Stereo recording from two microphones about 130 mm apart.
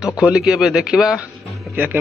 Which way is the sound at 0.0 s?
5° right (ahead or behind).